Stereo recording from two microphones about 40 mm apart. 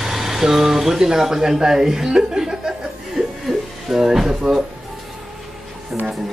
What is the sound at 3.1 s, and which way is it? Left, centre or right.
Chuckle, centre.